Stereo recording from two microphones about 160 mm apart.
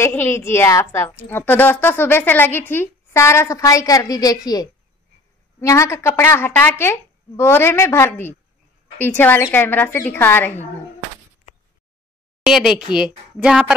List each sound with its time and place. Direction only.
0.0 s a woman's voice: 15° left (ahead or behind)
12.4 s speech: 5° right (ahead or behind)